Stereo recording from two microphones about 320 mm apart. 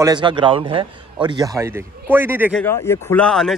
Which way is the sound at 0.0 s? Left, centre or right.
Centre.